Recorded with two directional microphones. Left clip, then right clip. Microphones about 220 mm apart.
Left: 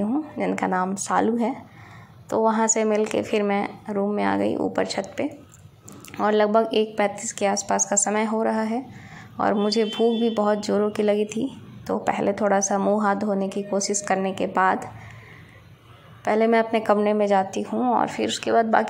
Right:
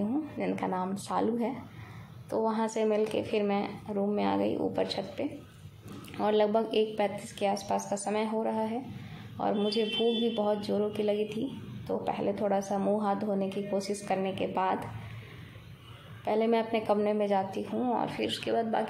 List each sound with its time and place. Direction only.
0.1 s a woman's voice: 15° left (ahead or behind)
16.3 s a woman's voice: 15° left (ahead or behind)